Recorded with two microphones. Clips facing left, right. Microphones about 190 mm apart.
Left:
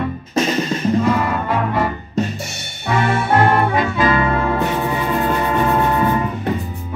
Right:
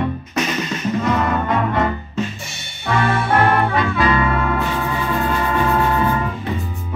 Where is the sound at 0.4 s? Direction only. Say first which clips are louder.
Left 4 dB; 30° left (ahead or behind).